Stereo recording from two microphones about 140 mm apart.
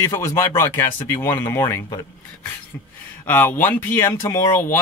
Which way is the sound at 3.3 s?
15° left (ahead or behind).